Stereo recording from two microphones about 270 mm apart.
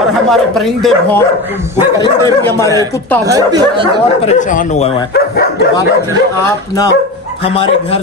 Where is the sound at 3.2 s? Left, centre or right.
Centre.